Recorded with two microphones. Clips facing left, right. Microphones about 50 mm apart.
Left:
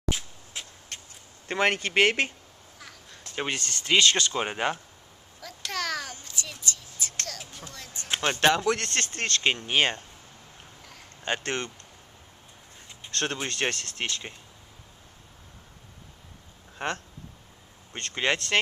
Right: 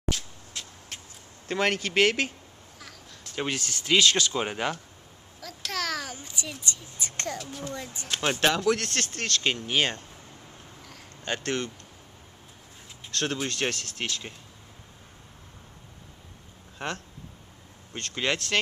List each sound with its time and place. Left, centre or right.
0.1 s a sound: centre
0.9 s a sound: centre
1.5 s speech: centre
2.8 s crow: centre
3.5 s speech: centre
5.4 s a sound: centre
6.1 s a child's voice: centre
8.2 s speech: centre
9.1 s speech: left
11.2 s speech: left
13.3 s speech: centre
16.7 s speech: centre